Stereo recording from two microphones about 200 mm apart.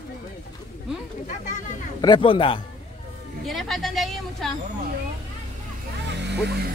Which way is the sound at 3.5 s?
Centre (ahead or behind).